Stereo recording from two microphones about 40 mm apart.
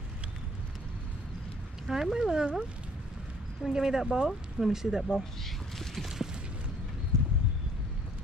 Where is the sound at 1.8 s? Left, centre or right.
Centre.